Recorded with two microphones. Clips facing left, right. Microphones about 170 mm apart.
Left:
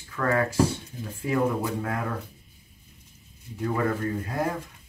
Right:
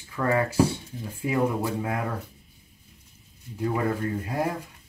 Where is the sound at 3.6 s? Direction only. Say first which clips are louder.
Even; 15° right (ahead or behind).